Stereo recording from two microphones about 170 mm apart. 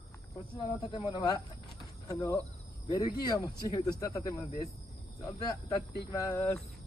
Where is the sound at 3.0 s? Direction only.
20° left (ahead or behind).